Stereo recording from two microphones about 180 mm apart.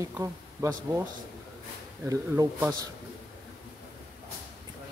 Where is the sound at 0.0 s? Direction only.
20° right (ahead or behind).